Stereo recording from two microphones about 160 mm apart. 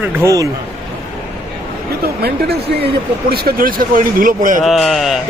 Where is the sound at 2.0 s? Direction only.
80° right.